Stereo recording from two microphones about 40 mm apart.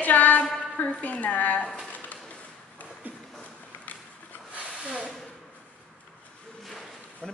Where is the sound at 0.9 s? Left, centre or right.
Left.